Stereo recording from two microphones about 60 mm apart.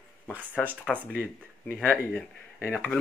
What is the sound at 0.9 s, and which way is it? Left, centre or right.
Speech, centre.